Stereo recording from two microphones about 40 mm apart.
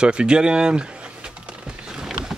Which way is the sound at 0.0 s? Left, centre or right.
Right.